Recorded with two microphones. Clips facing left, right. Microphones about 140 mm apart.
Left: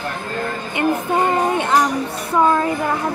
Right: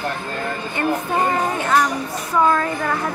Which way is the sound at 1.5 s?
20° left (ahead or behind).